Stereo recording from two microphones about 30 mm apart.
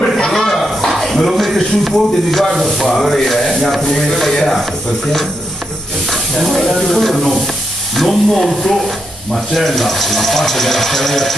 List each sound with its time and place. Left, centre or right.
0.3 s a sound: centre
3.1 s speech: centre
4.3 s speech: centre
4.6 s speech: centre
9.8 s speech: centre